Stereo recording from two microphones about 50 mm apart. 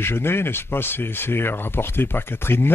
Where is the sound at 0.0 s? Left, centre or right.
Left.